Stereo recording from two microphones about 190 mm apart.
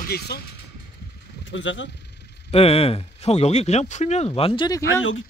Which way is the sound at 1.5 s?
75° left (ahead or behind).